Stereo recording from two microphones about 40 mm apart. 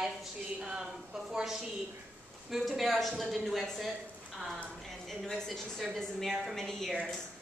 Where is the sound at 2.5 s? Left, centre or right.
Centre.